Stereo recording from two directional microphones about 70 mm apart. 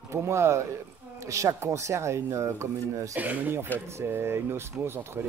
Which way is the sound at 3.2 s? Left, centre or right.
Right.